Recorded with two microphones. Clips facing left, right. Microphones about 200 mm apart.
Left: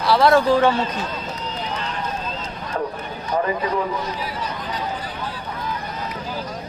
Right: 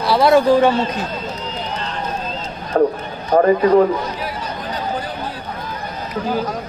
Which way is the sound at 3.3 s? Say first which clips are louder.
Right 10 dB; 55° right (ahead or behind).